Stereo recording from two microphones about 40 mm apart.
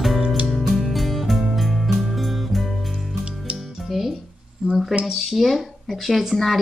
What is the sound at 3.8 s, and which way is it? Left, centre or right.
Music, centre.